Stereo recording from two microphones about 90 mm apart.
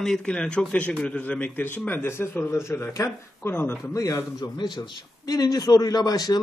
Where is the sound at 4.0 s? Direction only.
40° left (ahead or behind).